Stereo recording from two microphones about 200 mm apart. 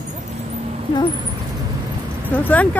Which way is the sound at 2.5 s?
10° left (ahead or behind).